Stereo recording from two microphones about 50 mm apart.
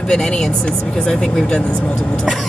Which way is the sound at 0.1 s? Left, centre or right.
Centre.